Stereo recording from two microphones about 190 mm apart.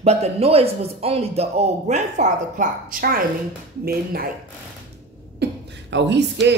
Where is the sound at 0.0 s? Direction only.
35° right (ahead or behind); by 4.3 s 50° right (ahead or behind).